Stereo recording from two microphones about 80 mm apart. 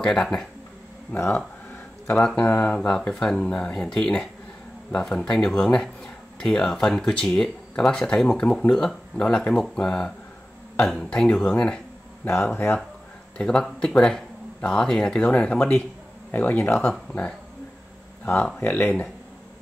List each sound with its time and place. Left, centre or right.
0.0 s speech: centre
2.1 s speech: centre
12.4 s speech: left
13.4 s speech: centre
18.6 s speech: left